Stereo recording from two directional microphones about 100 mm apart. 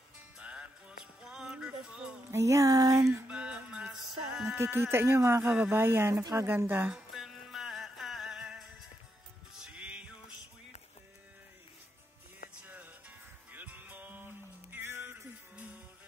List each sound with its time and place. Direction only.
0.4 s music: 10° right (ahead or behind)
2.3 s music: 30° right (ahead or behind)
3.3 s music: 10° right (ahead or behind)
4.5 s speech: 25° right (ahead or behind)
7.1 s music: centre (ahead or behind)
12.6 s music: 15° right (ahead or behind)